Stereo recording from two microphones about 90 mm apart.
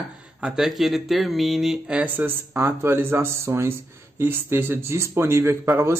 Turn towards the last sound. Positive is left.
turn(degrees=-25)  # may be behind; listen again after turning